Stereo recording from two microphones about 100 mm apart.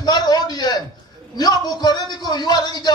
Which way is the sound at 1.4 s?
45° left (ahead or behind).